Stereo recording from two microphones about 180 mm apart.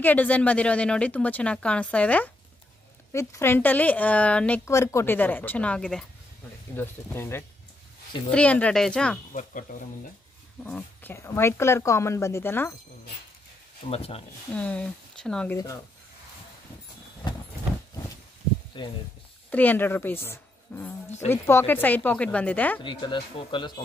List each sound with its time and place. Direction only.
0.0 s speech: 10° left (ahead or behind)
9.3 s speech: 45° left (ahead or behind)
10.6 s speech: 10° left (ahead or behind)
13.8 s speech: 35° left (ahead or behind)
14.5 s speech: 5° left (ahead or behind)
15.5 s speech: 20° left (ahead or behind)
18.8 s speech: 30° left (ahead or behind)
19.5 s speech: 10° left (ahead or behind)
22.8 s speech: 25° left (ahead or behind)